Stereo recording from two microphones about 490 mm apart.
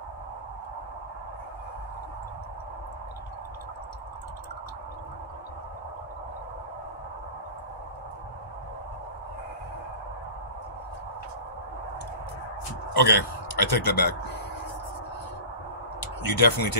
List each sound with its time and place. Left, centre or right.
12.9 s a man's voice: left
16.3 s speech: left